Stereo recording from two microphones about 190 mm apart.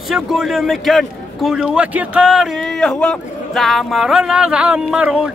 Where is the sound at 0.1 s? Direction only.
Centre (ahead or behind).